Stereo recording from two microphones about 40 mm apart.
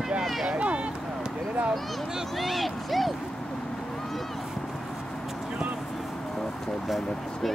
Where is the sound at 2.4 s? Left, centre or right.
Centre.